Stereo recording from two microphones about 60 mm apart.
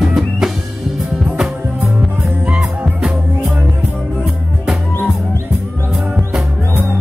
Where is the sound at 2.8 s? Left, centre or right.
Right.